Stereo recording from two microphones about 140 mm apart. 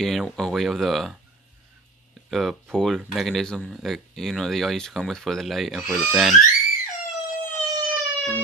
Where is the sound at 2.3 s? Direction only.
Centre (ahead or behind).